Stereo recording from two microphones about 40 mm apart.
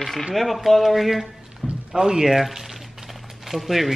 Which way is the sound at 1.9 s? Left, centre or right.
Centre.